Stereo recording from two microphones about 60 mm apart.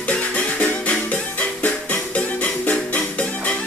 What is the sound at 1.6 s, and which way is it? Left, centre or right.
Music, left.